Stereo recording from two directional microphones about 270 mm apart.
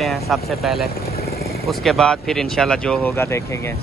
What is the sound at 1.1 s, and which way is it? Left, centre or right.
Vehicle, left.